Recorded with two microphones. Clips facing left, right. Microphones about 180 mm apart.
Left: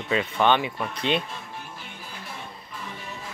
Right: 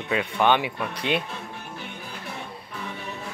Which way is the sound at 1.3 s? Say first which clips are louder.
Right 2 dB; 60° right (ahead or behind).